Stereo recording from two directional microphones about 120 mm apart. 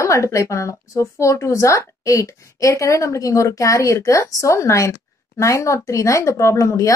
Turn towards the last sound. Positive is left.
turn(degrees=25)  # may be behind; listen again after turning